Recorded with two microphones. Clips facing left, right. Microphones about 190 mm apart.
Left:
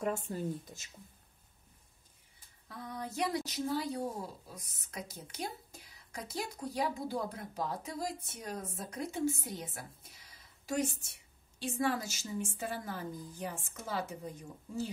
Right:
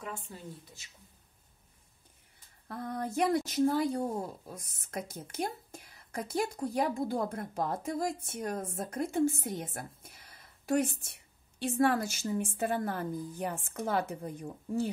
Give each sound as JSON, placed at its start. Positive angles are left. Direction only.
{"t": 0.0, "sound": "speech", "side_deg": 45}
{"t": 2.7, "sound": "a woman's voice", "side_deg": -50}